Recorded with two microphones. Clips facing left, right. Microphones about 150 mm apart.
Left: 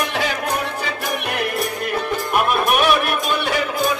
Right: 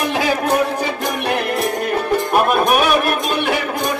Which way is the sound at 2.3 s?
35° right (ahead or behind).